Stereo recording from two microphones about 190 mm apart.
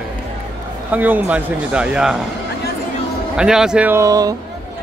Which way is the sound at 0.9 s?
10° right (ahead or behind).